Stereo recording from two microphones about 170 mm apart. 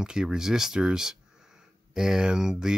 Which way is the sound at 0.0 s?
5° right (ahead or behind).